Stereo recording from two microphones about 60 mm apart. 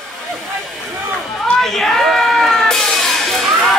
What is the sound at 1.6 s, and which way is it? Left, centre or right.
Music, centre.